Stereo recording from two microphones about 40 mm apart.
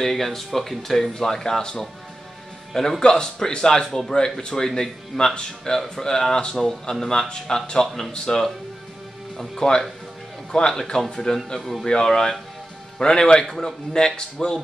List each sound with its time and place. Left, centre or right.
0.0 s speech: centre
3.0 s speech: centre